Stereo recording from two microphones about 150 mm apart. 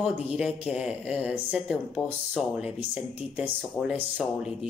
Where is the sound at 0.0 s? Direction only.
5° right (ahead or behind).